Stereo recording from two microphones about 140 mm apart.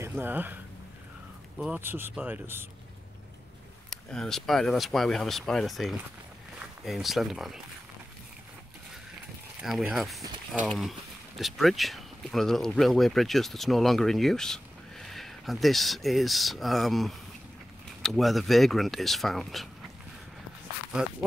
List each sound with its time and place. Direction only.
0.0 s speech: 15° right (ahead or behind)
1.6 s speech: 10° right (ahead or behind)
3.9 s speech: 5° left (ahead or behind)
9.6 s speech: centre (ahead or behind)